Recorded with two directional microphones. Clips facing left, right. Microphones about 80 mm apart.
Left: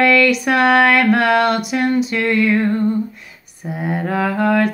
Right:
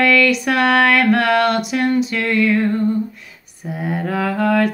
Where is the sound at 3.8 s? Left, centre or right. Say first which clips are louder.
Left 1 dB; left.